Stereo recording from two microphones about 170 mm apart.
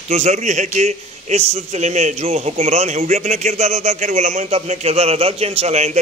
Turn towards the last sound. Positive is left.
turn(degrees=-40)  # may be behind; listen again after turning